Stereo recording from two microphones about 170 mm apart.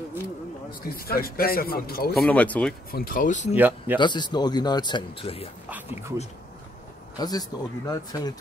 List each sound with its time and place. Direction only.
0.7 s a man's voice: 60° left (ahead or behind)
2.1 s speech: 5° left (ahead or behind)
2.9 s speech: 60° left (ahead or behind)
3.5 s speech: 10° right (ahead or behind)
4.0 s speech: 25° left (ahead or behind)
5.7 s speech: 10° right (ahead or behind)
7.2 s speech: 20° left (ahead or behind)